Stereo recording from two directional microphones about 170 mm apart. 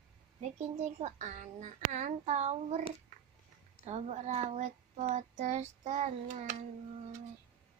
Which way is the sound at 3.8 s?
40° right (ahead or behind).